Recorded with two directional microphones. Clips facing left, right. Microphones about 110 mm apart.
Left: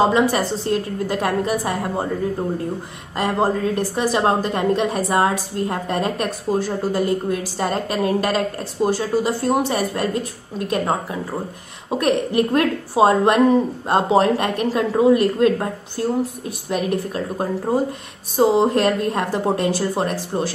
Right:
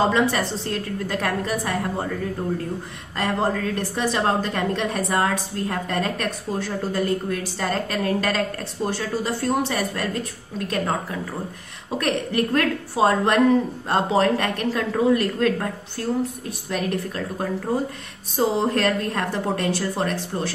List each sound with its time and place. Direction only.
0.0 s a woman's voice: 15° left (ahead or behind)